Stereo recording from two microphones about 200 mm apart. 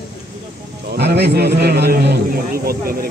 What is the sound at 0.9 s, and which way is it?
A man's voice, 55° right (ahead or behind).